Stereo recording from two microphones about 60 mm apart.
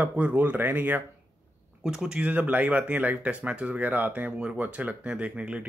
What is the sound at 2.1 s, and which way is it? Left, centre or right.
Speech, right.